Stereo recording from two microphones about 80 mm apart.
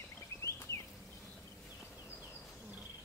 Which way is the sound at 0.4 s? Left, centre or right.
Left.